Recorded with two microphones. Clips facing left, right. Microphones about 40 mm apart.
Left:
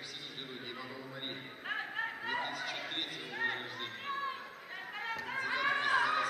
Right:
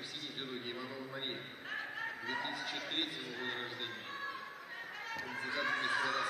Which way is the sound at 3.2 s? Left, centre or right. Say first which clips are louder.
Left 5 dB; left.